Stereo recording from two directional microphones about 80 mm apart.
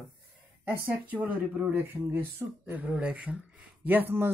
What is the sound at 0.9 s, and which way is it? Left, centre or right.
Speech, right.